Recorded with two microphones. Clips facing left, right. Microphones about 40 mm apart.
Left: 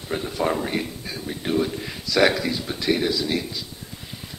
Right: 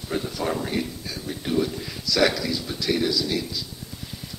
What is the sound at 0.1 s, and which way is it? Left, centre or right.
A man's voice, left.